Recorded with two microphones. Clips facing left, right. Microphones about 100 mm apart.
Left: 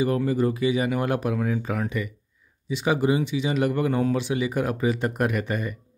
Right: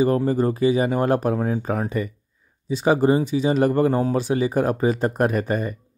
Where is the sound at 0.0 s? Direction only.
35° right (ahead or behind).